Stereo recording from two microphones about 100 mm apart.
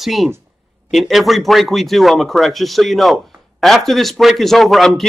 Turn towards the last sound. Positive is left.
turn(degrees=0)  # may be behind; listen again after turning